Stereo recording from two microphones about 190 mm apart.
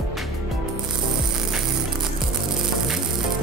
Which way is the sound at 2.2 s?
Centre (ahead or behind).